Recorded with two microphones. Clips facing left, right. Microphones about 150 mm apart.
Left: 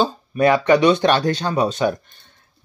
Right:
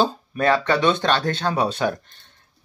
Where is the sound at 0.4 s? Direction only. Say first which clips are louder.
Left 5 dB; 15° left (ahead or behind).